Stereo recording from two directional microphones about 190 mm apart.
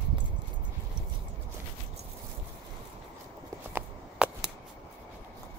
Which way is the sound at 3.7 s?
10° right (ahead or behind).